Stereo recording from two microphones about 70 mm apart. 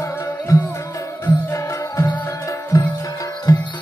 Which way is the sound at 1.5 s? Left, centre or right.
Left.